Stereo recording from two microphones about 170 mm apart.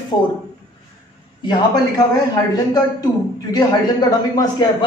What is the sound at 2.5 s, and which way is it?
A man's voice, 25° left (ahead or behind).